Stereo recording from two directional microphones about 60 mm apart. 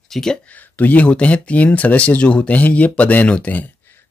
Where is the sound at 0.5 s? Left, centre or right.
Left.